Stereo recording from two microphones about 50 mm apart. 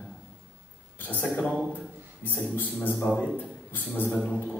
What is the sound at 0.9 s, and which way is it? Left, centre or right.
A man's voice, left.